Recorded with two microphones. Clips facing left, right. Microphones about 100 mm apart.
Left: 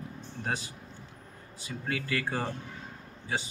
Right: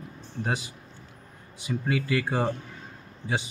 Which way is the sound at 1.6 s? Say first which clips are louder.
Right 7 dB; 15° right (ahead or behind).